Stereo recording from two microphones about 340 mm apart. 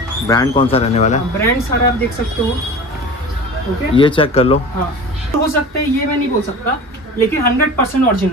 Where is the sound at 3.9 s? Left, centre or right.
Centre.